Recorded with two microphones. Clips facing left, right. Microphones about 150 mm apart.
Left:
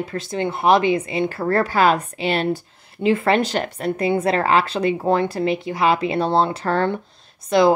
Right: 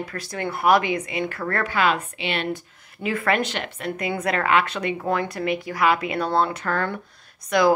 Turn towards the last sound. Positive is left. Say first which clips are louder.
# left 3 dB
turn(degrees=25)  # may be behind; listen again after turning